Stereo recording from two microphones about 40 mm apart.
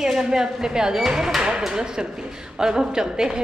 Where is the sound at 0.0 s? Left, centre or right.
Centre.